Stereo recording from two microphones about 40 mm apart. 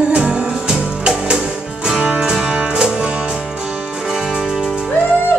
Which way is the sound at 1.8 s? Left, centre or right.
Right.